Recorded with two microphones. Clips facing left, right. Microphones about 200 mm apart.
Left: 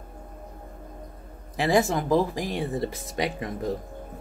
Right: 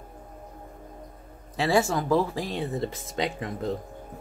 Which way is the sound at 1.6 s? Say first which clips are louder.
Left 1 dB; 20° left (ahead or behind).